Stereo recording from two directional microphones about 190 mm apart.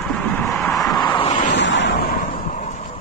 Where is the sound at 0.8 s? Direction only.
20° left (ahead or behind).